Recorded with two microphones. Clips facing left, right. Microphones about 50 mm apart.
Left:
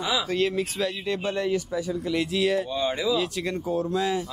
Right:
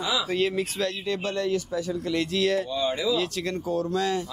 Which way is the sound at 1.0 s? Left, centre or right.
Centre.